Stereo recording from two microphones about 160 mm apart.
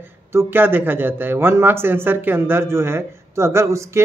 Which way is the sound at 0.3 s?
15° right (ahead or behind).